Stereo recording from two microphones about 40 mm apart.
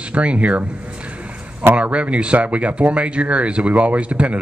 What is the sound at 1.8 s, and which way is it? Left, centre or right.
Speech, right.